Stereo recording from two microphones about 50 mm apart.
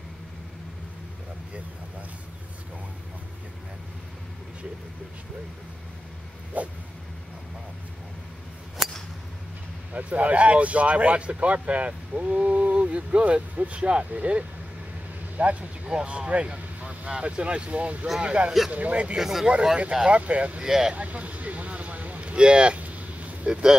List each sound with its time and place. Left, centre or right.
6.5 s dog: right
8.8 s scissors: centre
9.9 s speech: right
19.1 s speech: centre
20.1 s speech: right
20.6 s speech: centre
20.9 s vehicle: right
22.8 s a sound: right